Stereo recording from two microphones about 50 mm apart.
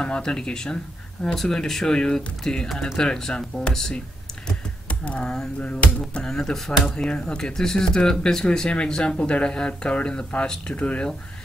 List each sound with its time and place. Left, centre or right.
0.0 s speech: centre
4.8 s computer keyboard: left
5.2 s speech: centre
5.6 s speech: left
6.2 s speech: centre